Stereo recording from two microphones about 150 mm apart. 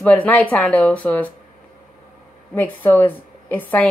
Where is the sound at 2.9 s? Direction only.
10° left (ahead or behind).